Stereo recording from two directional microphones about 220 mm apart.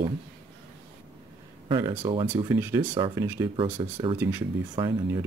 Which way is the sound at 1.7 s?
20° right (ahead or behind).